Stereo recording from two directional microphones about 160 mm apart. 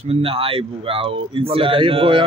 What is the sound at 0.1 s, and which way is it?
Speech, 35° right (ahead or behind).